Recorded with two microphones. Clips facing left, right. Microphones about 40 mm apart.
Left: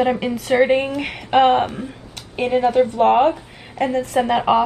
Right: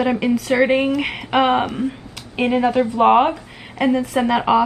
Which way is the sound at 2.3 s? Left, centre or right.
Right.